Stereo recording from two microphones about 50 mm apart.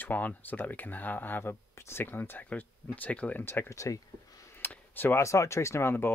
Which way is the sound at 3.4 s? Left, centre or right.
Left.